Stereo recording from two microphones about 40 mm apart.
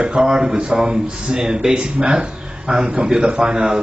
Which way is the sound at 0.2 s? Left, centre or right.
Centre.